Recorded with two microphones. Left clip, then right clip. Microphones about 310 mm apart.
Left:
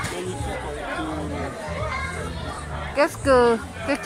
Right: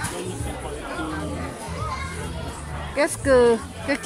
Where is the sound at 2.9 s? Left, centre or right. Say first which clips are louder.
Even; centre.